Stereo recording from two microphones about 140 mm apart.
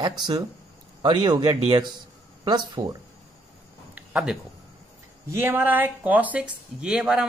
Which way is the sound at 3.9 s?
5° right (ahead or behind).